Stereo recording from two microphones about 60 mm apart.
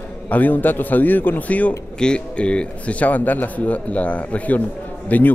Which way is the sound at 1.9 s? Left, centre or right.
Centre.